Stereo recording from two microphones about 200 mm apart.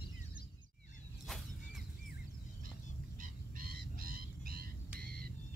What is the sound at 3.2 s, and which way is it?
Wild animals, 45° right (ahead or behind).